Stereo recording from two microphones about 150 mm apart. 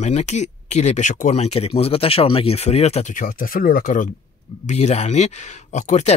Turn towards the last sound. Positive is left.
turn(degrees=55)  # may be behind; listen again after turning